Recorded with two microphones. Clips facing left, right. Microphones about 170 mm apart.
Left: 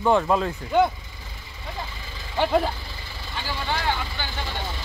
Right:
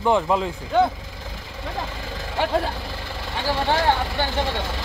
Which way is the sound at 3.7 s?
50° right (ahead or behind).